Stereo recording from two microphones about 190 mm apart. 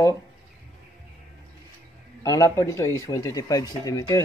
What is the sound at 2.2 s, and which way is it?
Speech, 15° left (ahead or behind).